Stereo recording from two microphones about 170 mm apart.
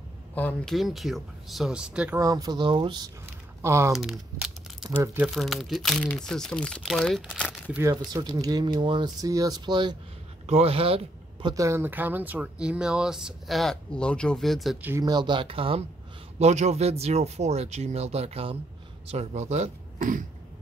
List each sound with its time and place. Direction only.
0.3 s speech: 10° left (ahead or behind)
2.1 s speech: 20° right (ahead or behind)
3.6 s speech: 15° right (ahead or behind)
3.9 s speech: centre (ahead or behind)
5.3 s speech: centre (ahead or behind)
7.7 s speech: 15° right (ahead or behind)
10.4 s speech: 35° right (ahead or behind)
11.4 s speech: 20° right (ahead or behind); by 14.9 s centre (ahead or behind)
14.9 s speech: 20° right (ahead or behind); by 20.2 s 50° right (ahead or behind)